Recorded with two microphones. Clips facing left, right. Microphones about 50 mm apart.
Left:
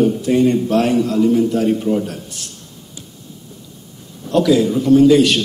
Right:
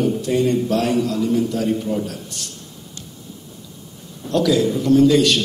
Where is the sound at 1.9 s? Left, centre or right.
Centre.